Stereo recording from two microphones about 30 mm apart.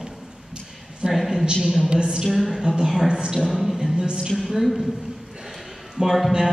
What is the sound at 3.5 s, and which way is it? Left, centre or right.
Speech, centre.